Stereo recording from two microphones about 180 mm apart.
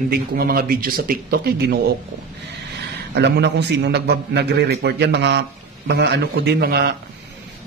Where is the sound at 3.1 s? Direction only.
70° right (ahead or behind).